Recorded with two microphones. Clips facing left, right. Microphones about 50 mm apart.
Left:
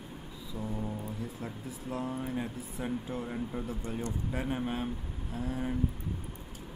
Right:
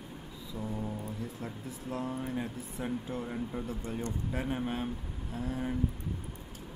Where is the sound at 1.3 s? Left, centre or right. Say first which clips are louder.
Even; centre.